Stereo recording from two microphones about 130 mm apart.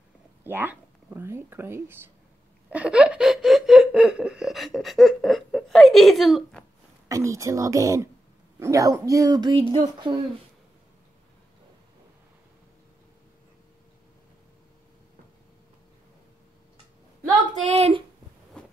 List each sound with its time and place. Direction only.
0.4 s speech: 15° right (ahead or behind)
2.7 s laughter: 10° right (ahead or behind)
7.1 s speech: 25° right (ahead or behind)
17.7 s speech: 50° right (ahead or behind)
18.6 s a sound: 5° left (ahead or behind)